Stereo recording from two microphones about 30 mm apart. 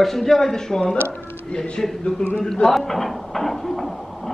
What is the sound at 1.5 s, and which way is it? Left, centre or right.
Speech, left.